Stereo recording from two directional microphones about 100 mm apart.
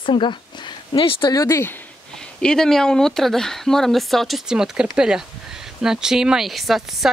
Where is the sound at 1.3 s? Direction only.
30° left (ahead or behind).